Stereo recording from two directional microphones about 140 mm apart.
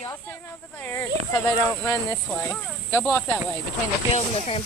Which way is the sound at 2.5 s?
15° left (ahead or behind).